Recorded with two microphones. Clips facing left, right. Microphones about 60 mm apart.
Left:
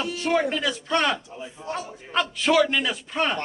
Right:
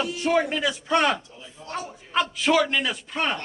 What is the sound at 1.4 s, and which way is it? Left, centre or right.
Speech, left.